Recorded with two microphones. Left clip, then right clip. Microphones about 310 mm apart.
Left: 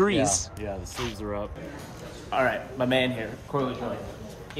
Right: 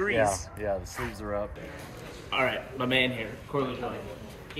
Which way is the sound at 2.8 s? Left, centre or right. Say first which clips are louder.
Left 1 dB; left.